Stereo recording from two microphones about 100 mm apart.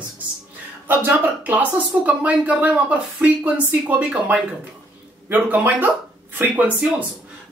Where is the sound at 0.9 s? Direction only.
15° right (ahead or behind).